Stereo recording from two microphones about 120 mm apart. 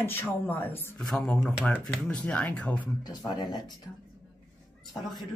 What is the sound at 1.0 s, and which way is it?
Speech, 5° left (ahead or behind).